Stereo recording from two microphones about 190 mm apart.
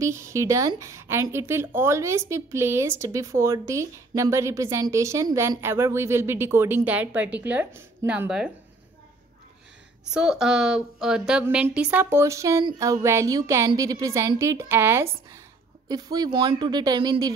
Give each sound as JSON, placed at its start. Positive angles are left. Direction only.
{"t": 0.0, "sound": "a woman's voice", "side_deg": -15}
{"t": 10.1, "sound": "a woman's voice", "side_deg": -5}